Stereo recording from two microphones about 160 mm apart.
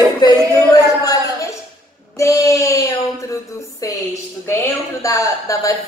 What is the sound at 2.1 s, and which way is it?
Child singing, 20° left (ahead or behind).